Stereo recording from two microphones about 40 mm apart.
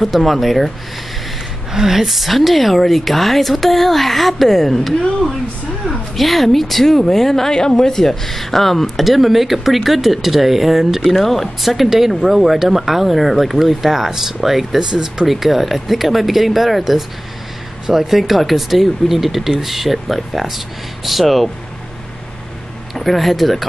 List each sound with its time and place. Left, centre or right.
0.0 s a woman's voice: centre
1.7 s a woman's voice: centre
15.2 s a woman's voice: centre
22.9 s a woman's voice: centre